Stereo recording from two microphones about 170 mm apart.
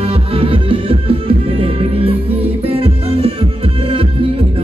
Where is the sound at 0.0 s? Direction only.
35° right (ahead or behind).